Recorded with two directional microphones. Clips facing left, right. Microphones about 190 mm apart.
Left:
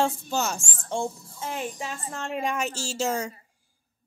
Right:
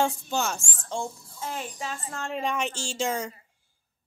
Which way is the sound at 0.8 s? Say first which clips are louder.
Left 3 dB; 20° left (ahead or behind).